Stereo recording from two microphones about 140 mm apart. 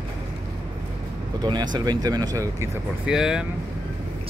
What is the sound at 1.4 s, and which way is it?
Speech, 30° right (ahead or behind).